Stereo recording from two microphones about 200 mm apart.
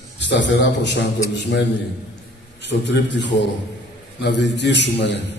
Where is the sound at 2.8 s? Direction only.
60° left (ahead or behind).